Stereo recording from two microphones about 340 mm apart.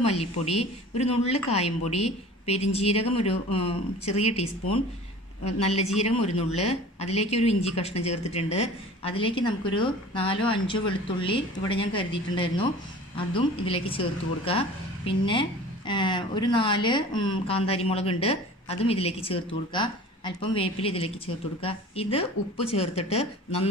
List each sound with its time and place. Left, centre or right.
0.0 s a man's voice: centre